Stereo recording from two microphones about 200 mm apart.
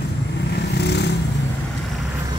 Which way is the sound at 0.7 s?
55° left (ahead or behind).